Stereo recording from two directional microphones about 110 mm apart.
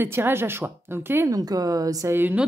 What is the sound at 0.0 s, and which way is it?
Speech, 20° right (ahead or behind).